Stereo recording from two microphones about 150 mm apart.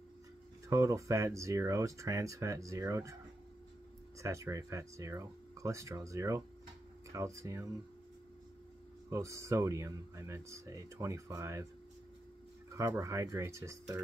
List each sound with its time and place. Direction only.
0.7 s speech: 20° right (ahead or behind)
4.2 s speech: 20° right (ahead or behind)
9.1 s speech: 20° right (ahead or behind)
12.7 s speech: 20° right (ahead or behind)